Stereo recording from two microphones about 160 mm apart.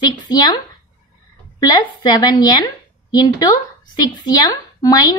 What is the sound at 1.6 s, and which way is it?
A woman's voice, 25° left (ahead or behind).